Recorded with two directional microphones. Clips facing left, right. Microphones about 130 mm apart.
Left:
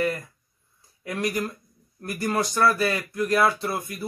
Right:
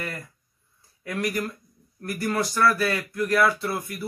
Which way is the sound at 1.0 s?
20° left (ahead or behind).